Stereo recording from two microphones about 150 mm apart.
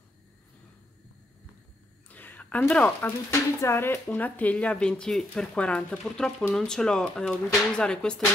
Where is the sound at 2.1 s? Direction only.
10° left (ahead or behind).